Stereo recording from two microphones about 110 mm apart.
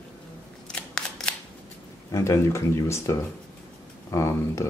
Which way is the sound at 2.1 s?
25° left (ahead or behind).